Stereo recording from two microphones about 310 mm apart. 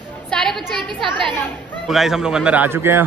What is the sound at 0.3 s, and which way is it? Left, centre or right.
A woman's voice, centre.